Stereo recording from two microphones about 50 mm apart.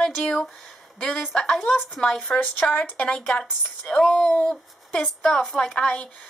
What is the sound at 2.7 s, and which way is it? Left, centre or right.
Speech, left.